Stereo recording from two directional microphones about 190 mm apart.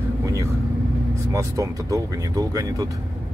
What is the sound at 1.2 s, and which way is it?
Speech, 15° right (ahead or behind).